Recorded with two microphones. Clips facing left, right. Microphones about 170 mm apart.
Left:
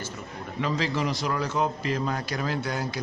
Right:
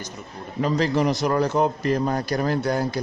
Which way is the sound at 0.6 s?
40° right (ahead or behind).